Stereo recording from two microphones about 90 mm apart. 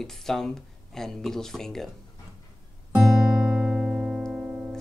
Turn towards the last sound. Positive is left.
turn(degrees=-10)  # may be behind; listen again after turning